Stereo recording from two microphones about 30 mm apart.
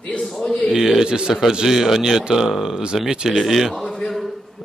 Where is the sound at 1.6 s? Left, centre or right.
Centre.